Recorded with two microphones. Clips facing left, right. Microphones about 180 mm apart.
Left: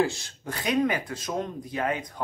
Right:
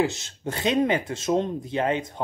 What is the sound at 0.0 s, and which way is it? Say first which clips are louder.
Speech: right 1 dB; 25° right (ahead or behind).